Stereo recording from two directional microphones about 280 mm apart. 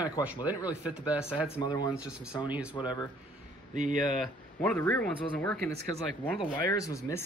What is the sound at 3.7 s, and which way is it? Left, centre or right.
Speech, right.